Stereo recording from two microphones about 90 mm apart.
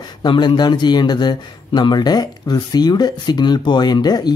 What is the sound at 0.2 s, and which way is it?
Speech, 55° left (ahead or behind).